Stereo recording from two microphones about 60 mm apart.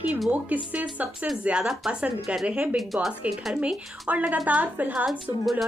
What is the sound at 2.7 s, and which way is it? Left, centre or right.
Speech, centre.